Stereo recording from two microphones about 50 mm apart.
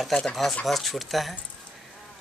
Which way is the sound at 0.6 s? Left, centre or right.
Centre.